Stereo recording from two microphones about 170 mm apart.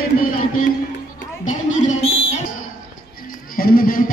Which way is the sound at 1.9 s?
35° left (ahead or behind).